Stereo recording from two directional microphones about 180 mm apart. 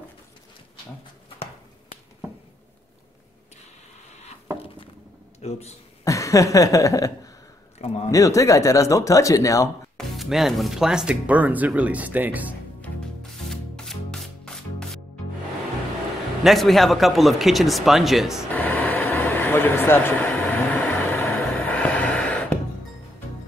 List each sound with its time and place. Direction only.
5.4 s a man's voice: 35° left (ahead or behind)
6.0 s chuckle: 20° left (ahead or behind)
8.1 s speech: 20° left (ahead or behind)
9.9 s speech: centre (ahead or behind)
12.8 s music: 5° left (ahead or behind)
16.4 s speech: centre (ahead or behind)
18.5 s a sound: 10° left (ahead or behind)